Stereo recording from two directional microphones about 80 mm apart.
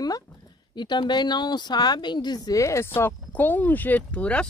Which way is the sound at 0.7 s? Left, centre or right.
Left.